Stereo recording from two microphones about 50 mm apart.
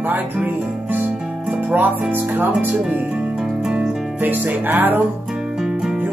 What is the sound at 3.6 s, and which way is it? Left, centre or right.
Music, centre.